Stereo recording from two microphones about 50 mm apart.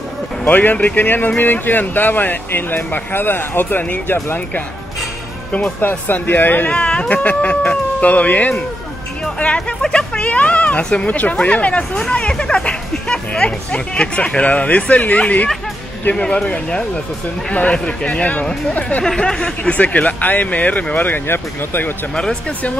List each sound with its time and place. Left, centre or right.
0.5 s speech: left
5.8 s speech: left
6.7 s speech: left
9.8 s speech: centre
10.2 s speech: left
19.0 s speech: centre; by 21.9 s left
22.1 s speech: centre